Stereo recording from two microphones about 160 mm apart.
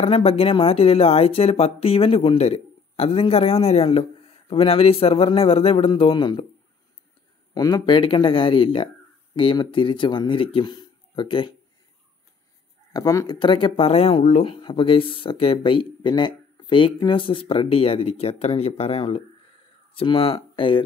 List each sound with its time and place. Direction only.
0.0 s speech: 35° left (ahead or behind)
7.5 s speech: 25° left (ahead or behind)
12.9 s speech: 25° left (ahead or behind)